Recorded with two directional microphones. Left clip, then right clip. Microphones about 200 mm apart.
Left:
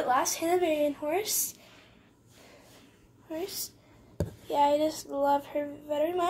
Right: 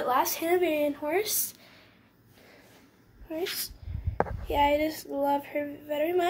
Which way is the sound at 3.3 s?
15° right (ahead or behind).